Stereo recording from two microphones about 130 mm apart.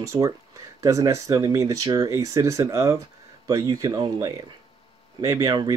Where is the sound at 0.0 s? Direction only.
25° right (ahead or behind).